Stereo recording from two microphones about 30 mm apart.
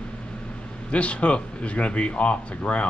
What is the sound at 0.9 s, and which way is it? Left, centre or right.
Speech, left.